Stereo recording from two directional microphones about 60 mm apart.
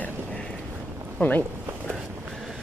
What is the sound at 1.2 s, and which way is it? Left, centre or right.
Speech, left.